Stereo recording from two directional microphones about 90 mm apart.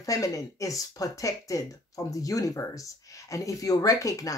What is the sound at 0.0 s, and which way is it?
Speech, 40° left (ahead or behind).